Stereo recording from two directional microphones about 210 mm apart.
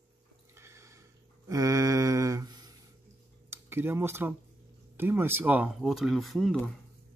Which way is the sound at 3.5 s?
10° right (ahead or behind).